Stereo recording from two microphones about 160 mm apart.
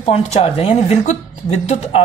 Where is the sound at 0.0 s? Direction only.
40° left (ahead or behind).